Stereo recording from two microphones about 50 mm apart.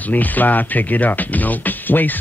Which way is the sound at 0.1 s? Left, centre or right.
Left.